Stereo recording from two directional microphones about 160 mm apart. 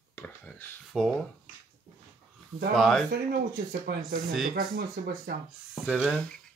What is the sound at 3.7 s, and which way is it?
Speech, 80° right.